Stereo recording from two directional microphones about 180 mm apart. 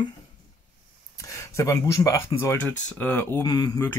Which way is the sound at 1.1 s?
15° left (ahead or behind).